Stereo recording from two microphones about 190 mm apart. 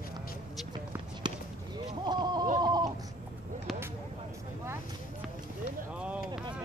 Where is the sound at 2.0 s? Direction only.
20° right (ahead or behind).